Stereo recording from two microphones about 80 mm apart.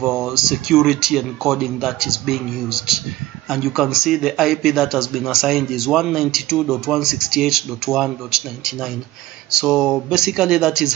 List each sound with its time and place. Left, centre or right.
0.0 s a man's voice: centre